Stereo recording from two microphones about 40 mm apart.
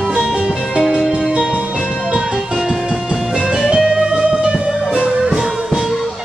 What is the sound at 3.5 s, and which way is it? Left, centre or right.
Music, centre.